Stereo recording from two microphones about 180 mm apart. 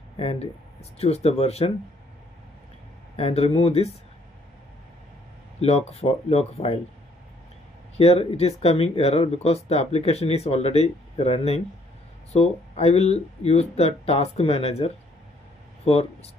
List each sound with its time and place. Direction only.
0.2 s speech: 35° left (ahead or behind)
3.2 s speech: 35° left (ahead or behind)
5.6 s speech: 35° left (ahead or behind)
8.0 s speech: 35° left (ahead or behind)